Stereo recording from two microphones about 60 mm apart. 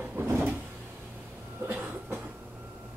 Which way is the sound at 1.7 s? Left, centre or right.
Right.